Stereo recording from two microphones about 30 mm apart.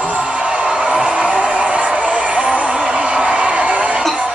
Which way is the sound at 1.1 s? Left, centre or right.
Right.